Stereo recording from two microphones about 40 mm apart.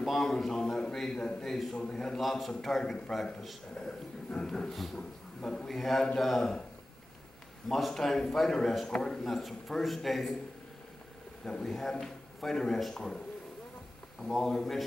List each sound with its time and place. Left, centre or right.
0.0 s a man's voice: centre
1.8 s a man's voice: centre
2.2 s a man's voice: centre
5.7 s a man's voice: centre
7.6 s a man's voice: centre
8.8 s a man's voice: centre
11.6 s a man's voice: centre
14.2 s a man's voice: centre